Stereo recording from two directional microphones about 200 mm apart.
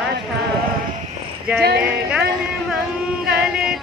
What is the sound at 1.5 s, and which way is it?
Speech, 55° right (ahead or behind).